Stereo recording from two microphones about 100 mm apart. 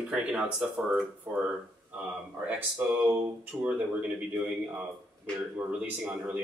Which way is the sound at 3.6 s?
15° right (ahead or behind).